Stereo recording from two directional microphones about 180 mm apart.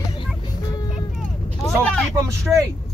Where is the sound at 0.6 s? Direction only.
20° left (ahead or behind).